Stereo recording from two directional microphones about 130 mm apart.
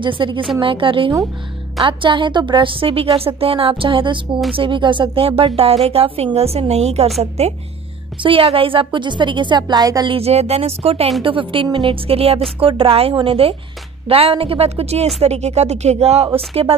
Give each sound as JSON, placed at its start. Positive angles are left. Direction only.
{"t": 0.0, "sound": "a woman's voice", "side_deg": -40}
{"t": 8.2, "sound": "a woman's voice", "side_deg": -45}
{"t": 10.1, "sound": "speech", "side_deg": -50}